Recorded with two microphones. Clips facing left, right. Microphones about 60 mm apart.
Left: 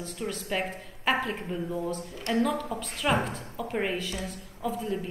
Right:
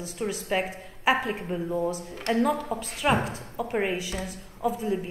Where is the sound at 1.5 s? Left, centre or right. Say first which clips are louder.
Right 4 dB; centre.